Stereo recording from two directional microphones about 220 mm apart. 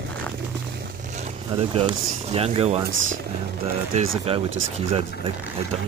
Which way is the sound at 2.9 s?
60° right (ahead or behind).